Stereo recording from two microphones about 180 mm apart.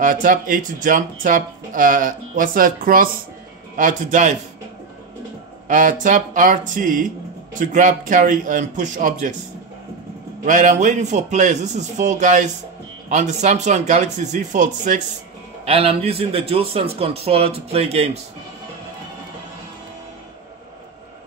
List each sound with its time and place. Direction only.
0.0 s speech: 45° right (ahead or behind)
5.7 s speech: 45° right (ahead or behind)
10.4 s a man's voice: 45° right (ahead or behind)
15.6 s a man's voice: 35° right (ahead or behind)